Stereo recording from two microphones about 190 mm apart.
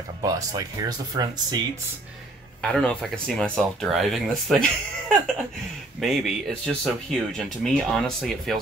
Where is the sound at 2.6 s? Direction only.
5° left (ahead or behind).